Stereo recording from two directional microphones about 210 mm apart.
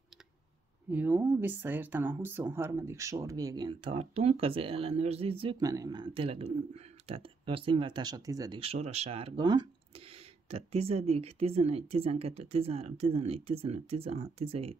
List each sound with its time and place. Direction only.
0.8 s speech: 10° right (ahead or behind); by 14.8 s 25° right (ahead or behind)